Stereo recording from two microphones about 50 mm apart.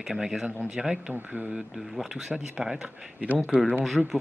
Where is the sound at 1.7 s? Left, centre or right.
Centre.